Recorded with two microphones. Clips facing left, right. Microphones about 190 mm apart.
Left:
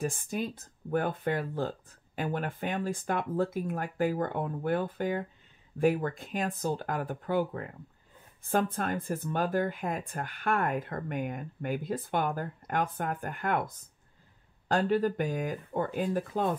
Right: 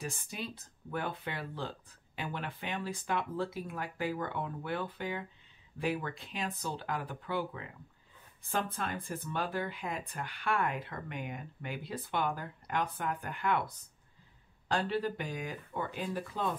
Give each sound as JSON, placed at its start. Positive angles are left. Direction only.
{"t": 0.0, "sound": "speech", "side_deg": 50}